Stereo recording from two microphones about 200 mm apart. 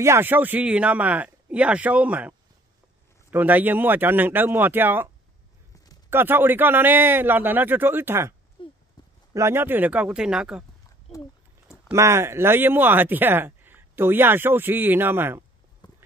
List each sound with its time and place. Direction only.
0.0 s speech: 10° right (ahead or behind)
8.6 s a sound: 25° left (ahead or behind)
9.3 s speech: 15° right (ahead or behind)
11.9 s speech: 15° right (ahead or behind)
15.8 s clip-clop: 20° left (ahead or behind)